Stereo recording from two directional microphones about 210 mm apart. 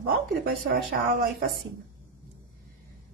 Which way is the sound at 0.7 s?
45° right (ahead or behind).